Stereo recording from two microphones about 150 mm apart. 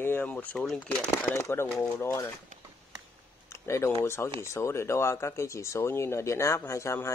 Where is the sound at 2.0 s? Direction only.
20° left (ahead or behind).